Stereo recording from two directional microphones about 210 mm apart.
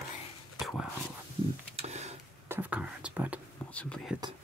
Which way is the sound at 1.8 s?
30° right (ahead or behind).